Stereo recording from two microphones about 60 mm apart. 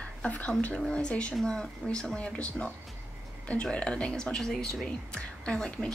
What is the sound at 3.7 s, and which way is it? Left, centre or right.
Speech, centre.